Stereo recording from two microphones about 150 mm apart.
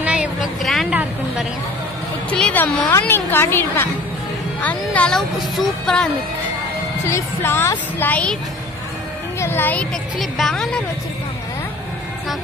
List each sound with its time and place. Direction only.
0.0 s a sound: 5° right (ahead or behind)
2.3 s a woman's voice: 10° left (ahead or behind)
7.1 s a woman's voice: 15° left (ahead or behind)
9.4 s a woman's voice: 15° left (ahead or behind)
10.1 s speech: centre (ahead or behind)